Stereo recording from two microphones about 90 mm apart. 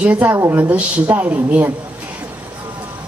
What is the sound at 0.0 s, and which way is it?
Speech, 15° right (ahead or behind).